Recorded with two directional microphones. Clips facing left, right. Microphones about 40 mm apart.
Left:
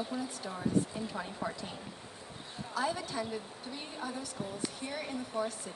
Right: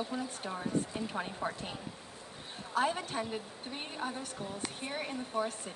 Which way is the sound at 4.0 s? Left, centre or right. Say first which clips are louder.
Right 1 dB; right.